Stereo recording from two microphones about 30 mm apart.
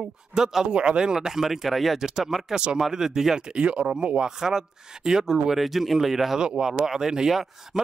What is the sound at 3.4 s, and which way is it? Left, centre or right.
Speech, right.